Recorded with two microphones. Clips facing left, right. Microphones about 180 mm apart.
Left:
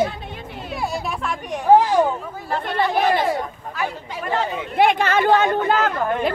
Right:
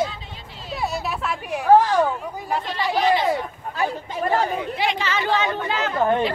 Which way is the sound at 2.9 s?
55° left (ahead or behind).